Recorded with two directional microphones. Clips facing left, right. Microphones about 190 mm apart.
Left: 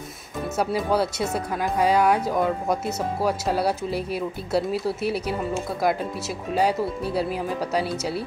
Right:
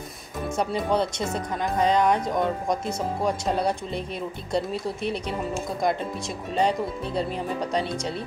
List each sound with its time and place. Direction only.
0.6 s speech: 5° left (ahead or behind)